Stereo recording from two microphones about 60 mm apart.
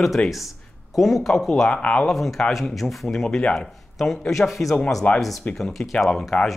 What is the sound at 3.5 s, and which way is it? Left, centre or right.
Speech, centre.